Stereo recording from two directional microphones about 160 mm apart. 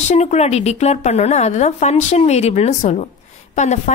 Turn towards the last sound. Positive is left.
turn(degrees=45)  # may be behind; listen again after turning